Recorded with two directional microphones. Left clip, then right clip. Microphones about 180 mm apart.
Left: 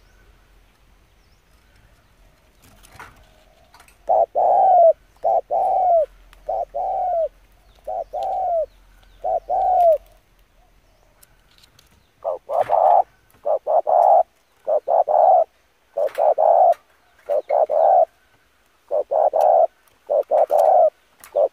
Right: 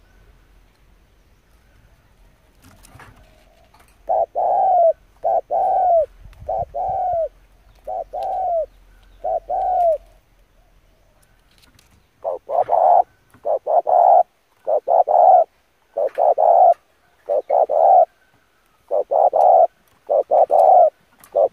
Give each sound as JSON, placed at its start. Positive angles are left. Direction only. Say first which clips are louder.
{"t": 4.0, "sound": "bird", "louder": "left 2 dB", "side_deg": 10}
{"t": 5.2, "sound": "bird", "louder": "right 1 dB", "side_deg": -5}
{"t": 8.2, "sound": "bird", "louder": "right 1 dB", "side_deg": -10}
{"t": 9.2, "sound": "bird", "louder": "left 1 dB", "side_deg": 5}
{"t": 11.6, "sound": "frog", "louder": "right 1 dB", "side_deg": -20}
{"t": 17.3, "sound": "bird", "louder": "right 2 dB", "side_deg": -25}
{"t": 18.9, "sound": "frog", "louder": "right 2 dB", "side_deg": -20}
{"t": 20.6, "sound": "bird", "louder": "right 3 dB", "side_deg": -25}